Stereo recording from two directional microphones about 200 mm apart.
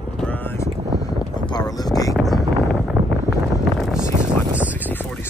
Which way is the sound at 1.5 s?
20° left (ahead or behind).